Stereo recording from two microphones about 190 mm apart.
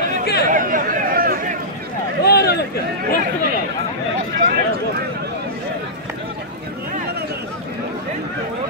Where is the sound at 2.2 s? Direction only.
55° left (ahead or behind).